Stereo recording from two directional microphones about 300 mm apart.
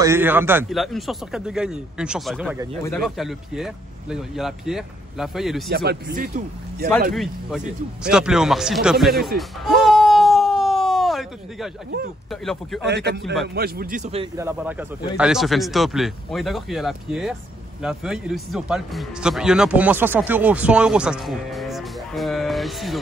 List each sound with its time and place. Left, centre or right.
0.0 s speech: centre
5.7 s speech: right
7.2 s speech: centre
9.4 s a sound: centre
12.3 s speech: centre
12.8 s speech: right
13.2 s speech: centre
13.6 s a man's voice: right; by 22.9 s centre